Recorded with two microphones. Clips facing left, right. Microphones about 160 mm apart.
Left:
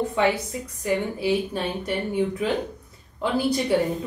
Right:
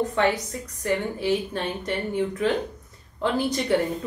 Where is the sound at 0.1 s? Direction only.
10° left (ahead or behind).